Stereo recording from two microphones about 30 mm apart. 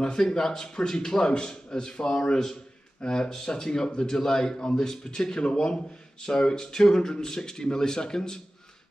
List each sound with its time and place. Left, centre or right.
0.3 s a man's voice: left